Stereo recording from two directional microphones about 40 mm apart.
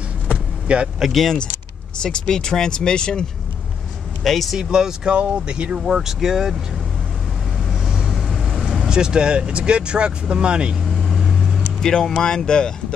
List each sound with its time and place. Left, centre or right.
0.7 s speech: right
1.1 s speech: centre
2.0 s speech: centre
4.2 s speech: centre
4.6 s speech: centre
7.7 s vehicle: centre
8.1 s vehicle: centre
8.6 s speech: centre
11.0 s vehicle: centre
11.8 s speech: centre